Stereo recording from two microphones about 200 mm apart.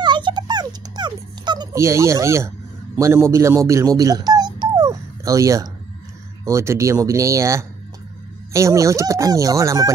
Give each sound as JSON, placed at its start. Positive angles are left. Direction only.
{"t": 0.0, "sound": "dog", "side_deg": -20}
{"t": 3.0, "sound": "speech", "side_deg": -15}